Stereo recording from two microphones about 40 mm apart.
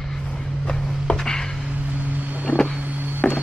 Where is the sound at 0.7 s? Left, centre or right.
Centre.